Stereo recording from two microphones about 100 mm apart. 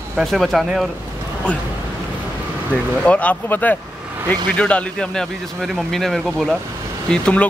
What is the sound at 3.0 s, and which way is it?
Speech, 15° left (ahead or behind).